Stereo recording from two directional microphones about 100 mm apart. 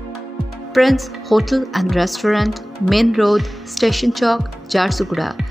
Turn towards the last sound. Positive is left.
turn(degrees=0)  # may be behind; listen again after turning